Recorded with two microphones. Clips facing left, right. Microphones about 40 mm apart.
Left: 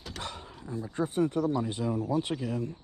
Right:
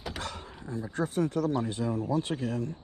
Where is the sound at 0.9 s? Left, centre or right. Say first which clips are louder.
Left 1 dB; left.